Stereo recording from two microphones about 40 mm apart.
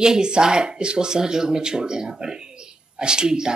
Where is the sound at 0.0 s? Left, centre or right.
Centre.